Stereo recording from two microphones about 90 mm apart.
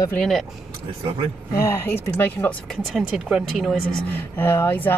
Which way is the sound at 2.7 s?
Centre (ahead or behind).